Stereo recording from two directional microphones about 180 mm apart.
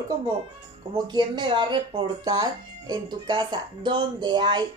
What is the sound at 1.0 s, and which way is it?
A woman's voice, 25° right (ahead or behind).